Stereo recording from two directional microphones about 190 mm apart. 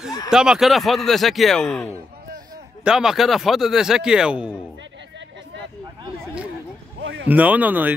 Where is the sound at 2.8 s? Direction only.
5° right (ahead or behind).